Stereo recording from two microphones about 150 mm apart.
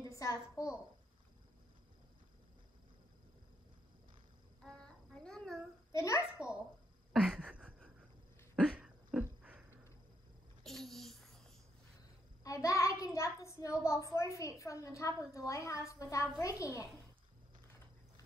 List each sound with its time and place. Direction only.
0.0 s a woman's voice: 20° left (ahead or behind)
4.6 s babbling: 5° left (ahead or behind)
5.9 s a child's voice: 20° left (ahead or behind)
7.1 s a sound: 5° right (ahead or behind)
10.6 s babbling: centre (ahead or behind)
12.4 s a child's voice: 20° left (ahead or behind)